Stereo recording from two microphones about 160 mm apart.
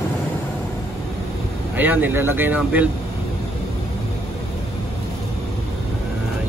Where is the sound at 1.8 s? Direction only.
10° right (ahead or behind).